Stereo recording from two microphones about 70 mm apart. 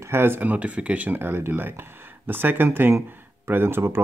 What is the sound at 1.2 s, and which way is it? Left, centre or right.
Speech, right.